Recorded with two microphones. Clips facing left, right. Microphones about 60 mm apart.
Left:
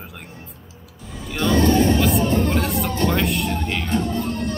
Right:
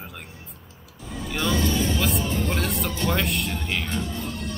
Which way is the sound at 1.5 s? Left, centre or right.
Left.